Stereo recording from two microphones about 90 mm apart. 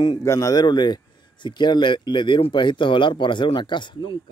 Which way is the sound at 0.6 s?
55° left (ahead or behind).